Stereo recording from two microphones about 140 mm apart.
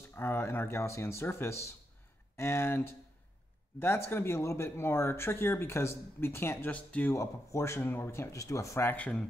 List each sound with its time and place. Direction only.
0.1 s speech: 15° left (ahead or behind)